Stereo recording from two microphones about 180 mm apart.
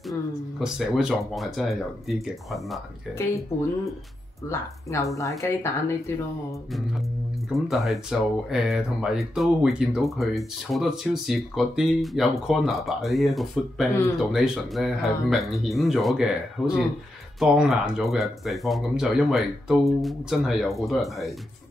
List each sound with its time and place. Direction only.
0.6 s speech: 5° right (ahead or behind)
4.5 s speech: 15° left (ahead or behind)
7.4 s speech: centre (ahead or behind)